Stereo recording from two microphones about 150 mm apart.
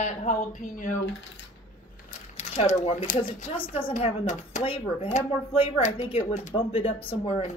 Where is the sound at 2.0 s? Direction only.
50° left (ahead or behind).